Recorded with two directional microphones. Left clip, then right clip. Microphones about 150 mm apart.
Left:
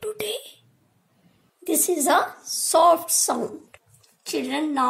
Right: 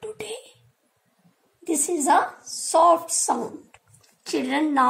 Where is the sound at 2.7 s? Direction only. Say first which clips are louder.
Even; 90° left; by 3.8 s 70° left (ahead or behind).